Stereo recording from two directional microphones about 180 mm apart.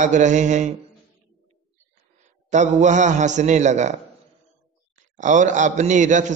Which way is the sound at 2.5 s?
40° right (ahead or behind).